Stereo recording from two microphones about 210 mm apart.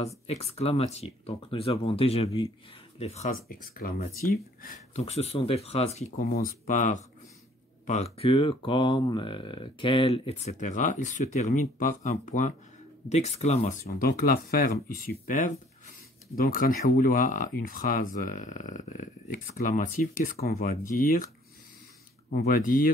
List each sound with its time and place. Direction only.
0.3 s speech: 30° left (ahead or behind)
3.4 s speech: 45° left (ahead or behind)
22.3 s speech: 45° left (ahead or behind)